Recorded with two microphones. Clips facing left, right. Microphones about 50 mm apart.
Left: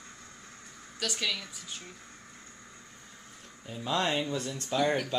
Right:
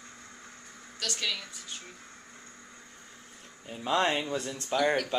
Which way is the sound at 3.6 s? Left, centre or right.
Right.